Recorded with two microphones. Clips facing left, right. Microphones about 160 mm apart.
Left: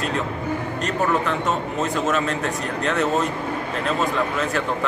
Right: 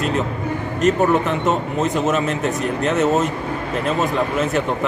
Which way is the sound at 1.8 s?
20° right (ahead or behind).